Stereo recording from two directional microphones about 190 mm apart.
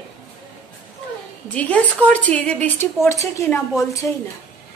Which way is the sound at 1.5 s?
5° left (ahead or behind).